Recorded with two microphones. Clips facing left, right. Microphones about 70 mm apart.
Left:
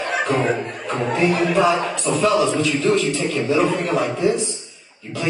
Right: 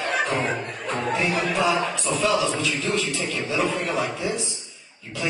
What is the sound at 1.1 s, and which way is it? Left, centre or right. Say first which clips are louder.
A man's voice: left 7 dB; left.